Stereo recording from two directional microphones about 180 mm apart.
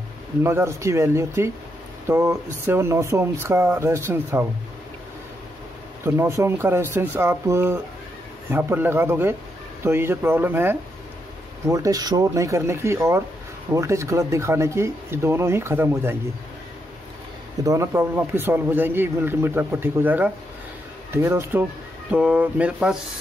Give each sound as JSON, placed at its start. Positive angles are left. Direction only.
{"t": 0.4, "sound": "speech", "side_deg": -15}
{"t": 6.0, "sound": "speech", "side_deg": -15}
{"t": 17.6, "sound": "speech", "side_deg": -15}